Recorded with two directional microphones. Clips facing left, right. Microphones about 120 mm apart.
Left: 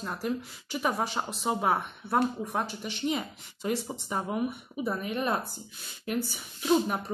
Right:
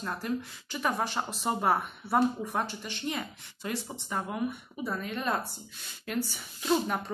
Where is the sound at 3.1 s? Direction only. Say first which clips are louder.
Left 4 dB; 15° left (ahead or behind).